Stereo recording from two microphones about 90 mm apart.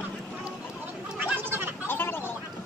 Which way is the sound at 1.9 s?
25° left (ahead or behind).